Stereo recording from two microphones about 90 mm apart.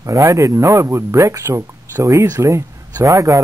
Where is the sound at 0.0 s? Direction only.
35° right (ahead or behind).